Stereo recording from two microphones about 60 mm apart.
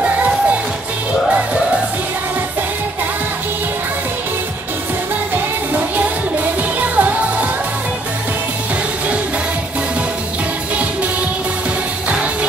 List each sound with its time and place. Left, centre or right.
5.3 s music: right